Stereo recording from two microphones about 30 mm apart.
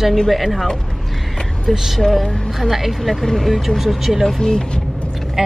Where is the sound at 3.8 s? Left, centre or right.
Centre.